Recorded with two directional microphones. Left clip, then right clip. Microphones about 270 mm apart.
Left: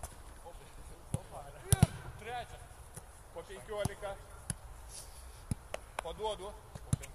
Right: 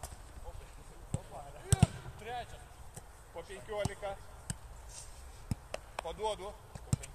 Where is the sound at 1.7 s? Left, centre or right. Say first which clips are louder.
Even; centre.